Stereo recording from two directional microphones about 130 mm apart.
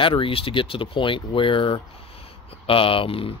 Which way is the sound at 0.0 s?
40° left (ahead or behind).